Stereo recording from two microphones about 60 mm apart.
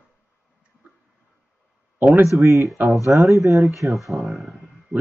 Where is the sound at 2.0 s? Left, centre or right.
Right.